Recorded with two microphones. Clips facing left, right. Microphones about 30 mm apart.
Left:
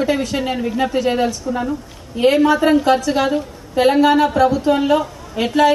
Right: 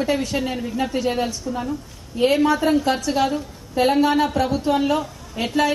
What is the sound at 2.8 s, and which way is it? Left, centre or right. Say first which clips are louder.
A woman's voice: left 5 dB; left.